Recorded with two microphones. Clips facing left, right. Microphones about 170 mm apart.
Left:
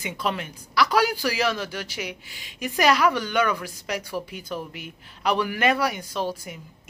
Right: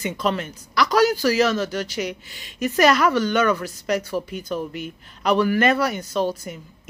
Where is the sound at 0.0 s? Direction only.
10° left (ahead or behind).